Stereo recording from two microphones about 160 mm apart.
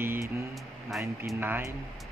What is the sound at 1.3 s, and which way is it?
Speech, 15° right (ahead or behind).